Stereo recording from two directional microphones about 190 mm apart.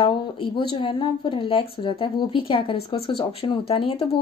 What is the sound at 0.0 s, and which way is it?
Speech, 25° left (ahead or behind).